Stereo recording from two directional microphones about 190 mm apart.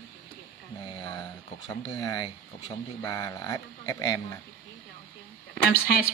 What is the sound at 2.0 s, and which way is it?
Speech, 20° left (ahead or behind).